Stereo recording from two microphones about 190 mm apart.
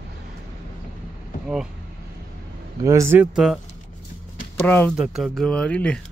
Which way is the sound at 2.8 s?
15° right (ahead or behind).